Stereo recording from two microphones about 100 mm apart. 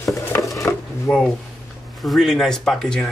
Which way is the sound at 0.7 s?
25° left (ahead or behind).